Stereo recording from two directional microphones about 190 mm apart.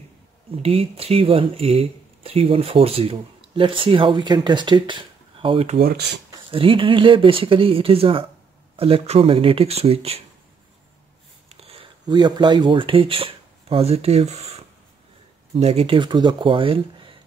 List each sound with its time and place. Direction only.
0.5 s speech: 30° right (ahead or behind)
5.8 s speech: 55° right (ahead or behind)
6.5 s speech: 30° right (ahead or behind)
11.4 s speech: 30° right (ahead or behind)